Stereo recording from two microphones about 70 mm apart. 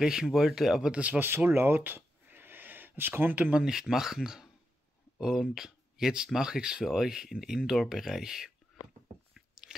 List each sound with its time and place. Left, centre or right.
0.0 s speech: centre
1.2 s speech: right
3.6 s speech: centre
9.3 s biting: centre